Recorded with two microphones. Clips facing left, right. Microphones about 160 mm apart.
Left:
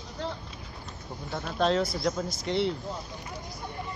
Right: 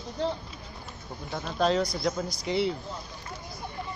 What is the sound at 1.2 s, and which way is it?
Speech, centre (ahead or behind).